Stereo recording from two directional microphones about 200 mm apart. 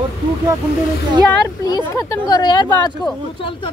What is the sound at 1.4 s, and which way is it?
Speech, 15° left (ahead or behind).